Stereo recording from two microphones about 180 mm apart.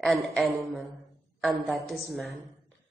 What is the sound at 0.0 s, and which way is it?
A woman's voice, 5° left (ahead or behind).